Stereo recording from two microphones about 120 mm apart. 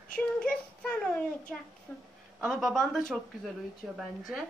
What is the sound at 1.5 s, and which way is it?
Speech, centre (ahead or behind).